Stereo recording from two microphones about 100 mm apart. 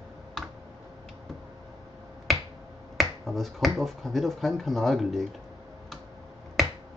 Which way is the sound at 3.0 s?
Centre (ahead or behind).